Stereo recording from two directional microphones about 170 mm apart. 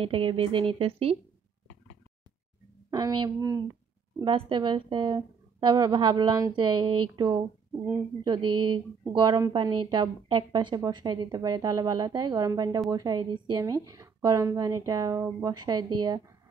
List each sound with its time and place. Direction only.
0.0 s speech: 30° right (ahead or behind)
2.9 s a woman's voice: 25° right (ahead or behind)